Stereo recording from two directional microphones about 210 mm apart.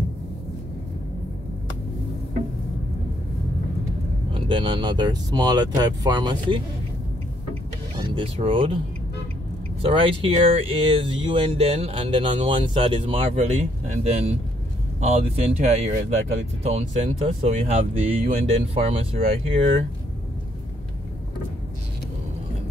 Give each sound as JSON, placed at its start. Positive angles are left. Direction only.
{"t": 4.3, "sound": "speech", "side_deg": -25}
{"t": 8.0, "sound": "speech", "side_deg": -25}
{"t": 9.8, "sound": "speech", "side_deg": -25}